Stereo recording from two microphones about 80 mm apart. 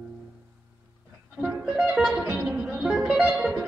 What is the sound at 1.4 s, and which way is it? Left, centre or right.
Music, centre.